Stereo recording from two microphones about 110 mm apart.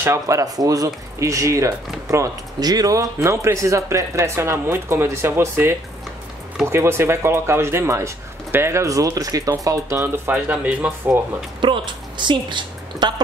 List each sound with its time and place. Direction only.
0.0 s speech: 25° right (ahead or behind)
11.6 s a woman's voice: 45° right (ahead or behind)